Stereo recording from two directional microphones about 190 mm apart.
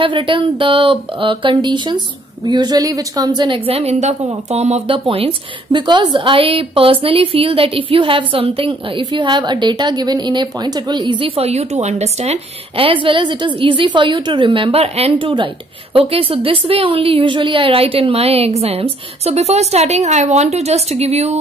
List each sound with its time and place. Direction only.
0.0 s a woman's voice: 25° right (ahead or behind)